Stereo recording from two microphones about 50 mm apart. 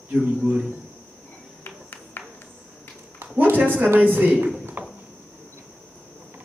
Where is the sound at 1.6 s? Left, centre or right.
Left.